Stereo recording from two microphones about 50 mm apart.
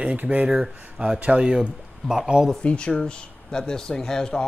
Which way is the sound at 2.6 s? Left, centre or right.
Left.